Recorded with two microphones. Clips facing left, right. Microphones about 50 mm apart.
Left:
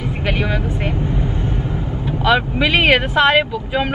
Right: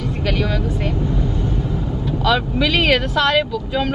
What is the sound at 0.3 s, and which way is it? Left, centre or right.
Speech, left.